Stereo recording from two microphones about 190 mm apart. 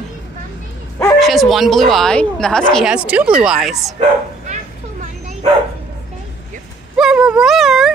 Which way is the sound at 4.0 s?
35° right (ahead or behind).